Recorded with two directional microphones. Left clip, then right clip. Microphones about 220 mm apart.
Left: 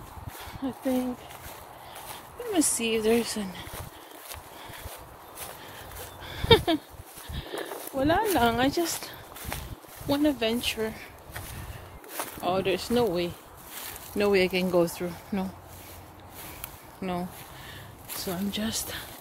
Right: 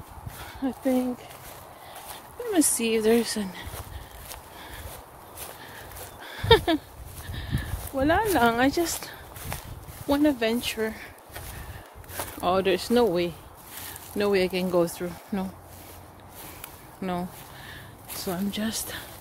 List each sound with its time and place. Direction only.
0.6 s speech: 15° right (ahead or behind)
2.5 s speech: 15° right (ahead or behind)
6.2 s a sound: centre (ahead or behind)
8.0 s speech: 5° right (ahead or behind)
12.4 s speech: 25° right (ahead or behind)
14.1 s speech: 10° left (ahead or behind)
17.0 s a sound: 10° right (ahead or behind)